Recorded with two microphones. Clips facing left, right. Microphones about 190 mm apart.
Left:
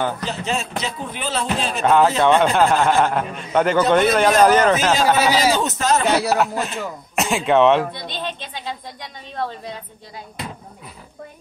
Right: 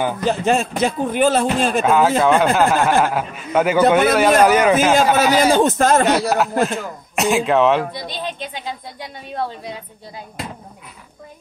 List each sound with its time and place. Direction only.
0.2 s speech: 50° right (ahead or behind)
1.8 s a man's voice: 5° right (ahead or behind)
5.4 s speech: 50° right (ahead or behind)
6.0 s speech: centre (ahead or behind)
7.9 s a man's voice: 10° right (ahead or behind)